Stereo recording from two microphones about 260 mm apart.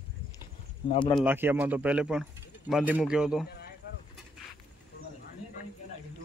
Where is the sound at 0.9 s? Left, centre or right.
Centre.